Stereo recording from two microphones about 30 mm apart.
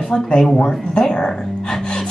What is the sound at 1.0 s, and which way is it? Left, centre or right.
Speech, left.